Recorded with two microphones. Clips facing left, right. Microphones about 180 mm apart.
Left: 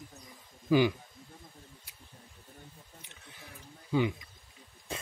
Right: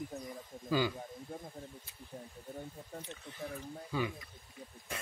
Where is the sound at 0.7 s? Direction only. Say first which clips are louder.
Left 7 dB; 20° left (ahead or behind).